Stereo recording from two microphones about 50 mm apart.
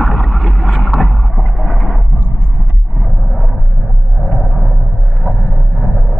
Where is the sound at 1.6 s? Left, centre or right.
Left.